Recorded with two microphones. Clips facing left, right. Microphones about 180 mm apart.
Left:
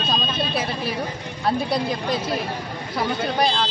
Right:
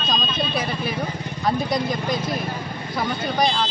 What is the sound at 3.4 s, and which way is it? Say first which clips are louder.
Speech: right 1 dB; centre (ahead or behind).